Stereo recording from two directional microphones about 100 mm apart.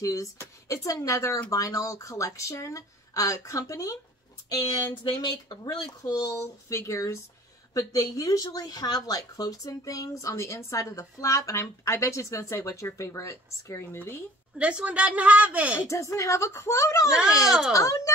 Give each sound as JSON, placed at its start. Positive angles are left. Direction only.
{"t": 0.0, "sound": "speech", "side_deg": 35}
{"t": 14.6, "sound": "a woman's voice", "side_deg": -10}
{"t": 15.9, "sound": "speech", "side_deg": 30}
{"t": 17.5, "sound": "speech", "side_deg": -5}
{"t": 17.7, "sound": "speech", "side_deg": 35}